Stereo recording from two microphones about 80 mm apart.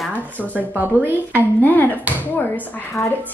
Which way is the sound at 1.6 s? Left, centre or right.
Left.